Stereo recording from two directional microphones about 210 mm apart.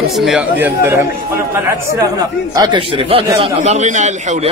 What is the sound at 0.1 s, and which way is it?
Speech, centre (ahead or behind).